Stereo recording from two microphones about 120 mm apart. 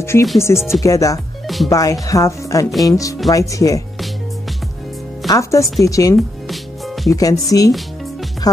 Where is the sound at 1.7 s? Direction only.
30° left (ahead or behind).